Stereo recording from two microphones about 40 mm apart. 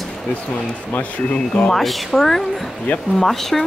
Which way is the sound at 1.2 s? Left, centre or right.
Left.